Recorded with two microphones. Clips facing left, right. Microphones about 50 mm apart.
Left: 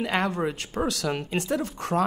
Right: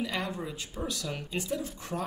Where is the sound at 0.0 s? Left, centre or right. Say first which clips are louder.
Left 8 dB; left.